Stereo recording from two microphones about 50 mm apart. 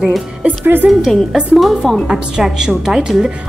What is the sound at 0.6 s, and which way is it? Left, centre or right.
Speech, right.